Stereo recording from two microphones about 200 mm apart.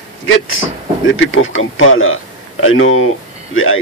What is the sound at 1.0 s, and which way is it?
Speech, 75° left (ahead or behind).